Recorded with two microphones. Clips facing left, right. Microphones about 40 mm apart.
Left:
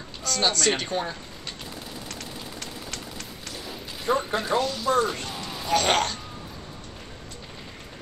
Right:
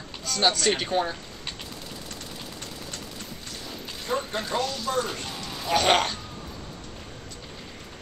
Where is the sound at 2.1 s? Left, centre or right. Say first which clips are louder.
Left 2 dB; left.